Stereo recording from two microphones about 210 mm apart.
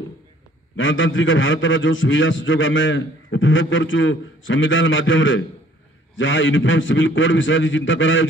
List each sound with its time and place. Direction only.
0.7 s a man's voice: 65° left (ahead or behind)